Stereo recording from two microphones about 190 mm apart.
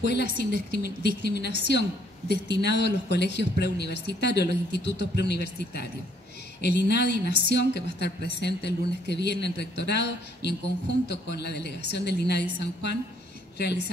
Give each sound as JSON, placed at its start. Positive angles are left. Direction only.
{"t": 0.0, "sound": "speech", "side_deg": 60}